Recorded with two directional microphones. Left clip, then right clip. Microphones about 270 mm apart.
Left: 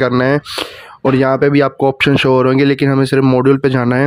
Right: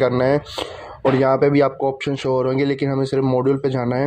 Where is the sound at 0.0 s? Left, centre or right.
Left.